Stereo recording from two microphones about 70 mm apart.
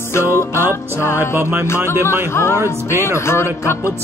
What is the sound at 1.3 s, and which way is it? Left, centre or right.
Music, right.